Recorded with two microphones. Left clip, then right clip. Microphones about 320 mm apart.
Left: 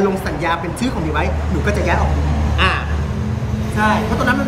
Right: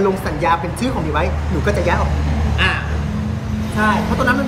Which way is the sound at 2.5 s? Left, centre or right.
Centre.